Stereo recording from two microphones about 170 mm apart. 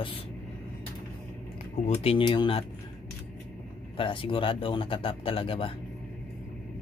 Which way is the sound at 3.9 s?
30° left (ahead or behind).